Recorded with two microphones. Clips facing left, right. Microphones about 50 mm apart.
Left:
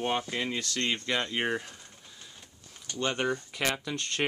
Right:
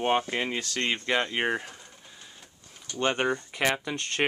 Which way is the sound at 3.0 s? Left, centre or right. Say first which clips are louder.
Right 3 dB; right.